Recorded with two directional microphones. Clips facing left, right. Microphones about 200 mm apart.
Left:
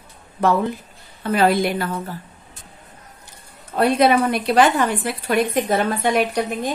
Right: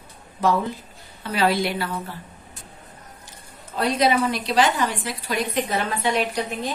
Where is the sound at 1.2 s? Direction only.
50° left (ahead or behind).